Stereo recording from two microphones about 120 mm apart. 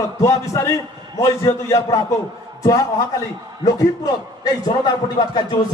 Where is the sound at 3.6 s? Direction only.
30° left (ahead or behind).